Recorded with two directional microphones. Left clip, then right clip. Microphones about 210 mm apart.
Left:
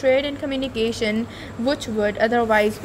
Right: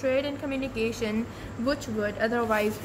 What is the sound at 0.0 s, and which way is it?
A woman's voice, 25° left (ahead or behind).